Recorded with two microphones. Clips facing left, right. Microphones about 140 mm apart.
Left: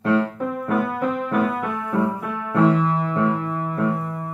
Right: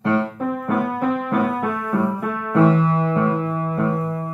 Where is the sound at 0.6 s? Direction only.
40° right (ahead or behind).